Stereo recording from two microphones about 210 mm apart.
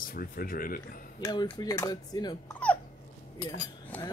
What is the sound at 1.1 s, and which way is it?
Speech, 20° left (ahead or behind).